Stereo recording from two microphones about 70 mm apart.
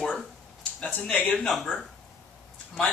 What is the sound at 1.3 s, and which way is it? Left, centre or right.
Speech, centre.